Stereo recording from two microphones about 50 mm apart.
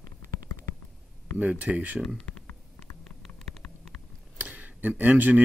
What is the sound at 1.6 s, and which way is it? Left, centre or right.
Speech, right.